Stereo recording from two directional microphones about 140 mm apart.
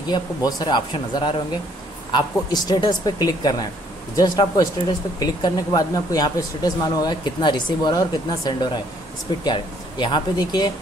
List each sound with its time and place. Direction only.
0.1 s speech: 25° left (ahead or behind)